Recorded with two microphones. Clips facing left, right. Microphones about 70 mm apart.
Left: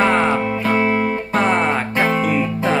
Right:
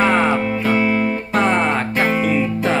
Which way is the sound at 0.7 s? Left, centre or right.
Centre.